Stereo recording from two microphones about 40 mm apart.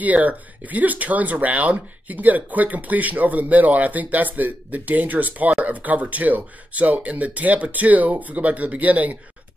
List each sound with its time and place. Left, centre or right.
0.0 s speech: right